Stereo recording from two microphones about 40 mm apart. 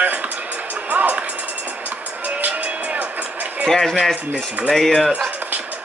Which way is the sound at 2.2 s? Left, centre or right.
Right.